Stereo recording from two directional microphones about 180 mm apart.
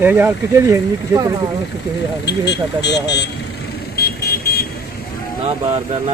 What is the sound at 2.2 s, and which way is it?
Speech, 75° left (ahead or behind).